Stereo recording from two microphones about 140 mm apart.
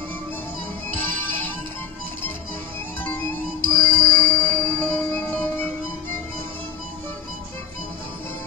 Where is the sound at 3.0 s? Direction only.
15° left (ahead or behind).